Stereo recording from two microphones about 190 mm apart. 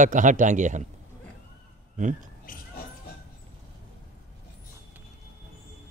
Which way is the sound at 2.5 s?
50° left (ahead or behind).